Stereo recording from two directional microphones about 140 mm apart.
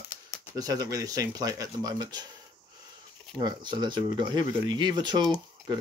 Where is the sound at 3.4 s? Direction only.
30° right (ahead or behind).